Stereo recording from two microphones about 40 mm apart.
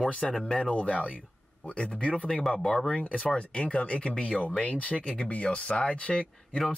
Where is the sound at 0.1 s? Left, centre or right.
Left.